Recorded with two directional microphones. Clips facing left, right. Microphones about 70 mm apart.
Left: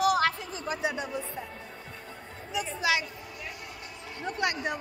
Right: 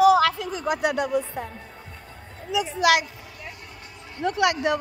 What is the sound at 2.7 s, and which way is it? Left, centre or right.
Speech, right.